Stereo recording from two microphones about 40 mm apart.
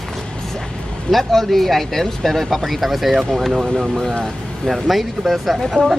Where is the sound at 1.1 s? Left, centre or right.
Centre.